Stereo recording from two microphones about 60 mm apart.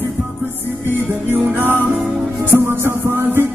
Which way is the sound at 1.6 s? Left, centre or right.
Right.